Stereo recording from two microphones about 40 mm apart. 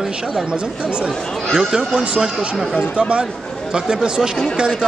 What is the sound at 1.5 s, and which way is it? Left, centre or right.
Speech, right.